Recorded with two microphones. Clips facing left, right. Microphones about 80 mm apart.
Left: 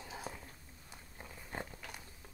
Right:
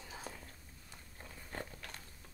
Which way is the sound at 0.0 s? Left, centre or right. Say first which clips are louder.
Left 3 dB; centre.